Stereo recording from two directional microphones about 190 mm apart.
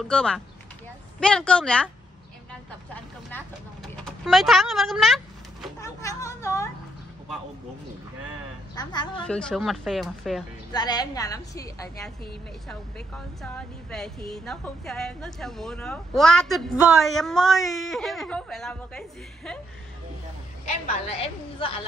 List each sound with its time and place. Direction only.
0.0 s a woman's voice: 5° left (ahead or behind)
2.9 s speech: 10° left (ahead or behind)
3.9 s a sound: centre (ahead or behind)
5.8 s a sound: 15° left (ahead or behind)
8.7 s a woman's voice: 20° left (ahead or behind)
9.2 s a woman's voice: 5° left (ahead or behind)
10.7 s a woman's voice: 20° left (ahead or behind)
13.4 s a woman's voice: 5° left (ahead or behind)
20.8 s a woman's voice: 30° left (ahead or behind)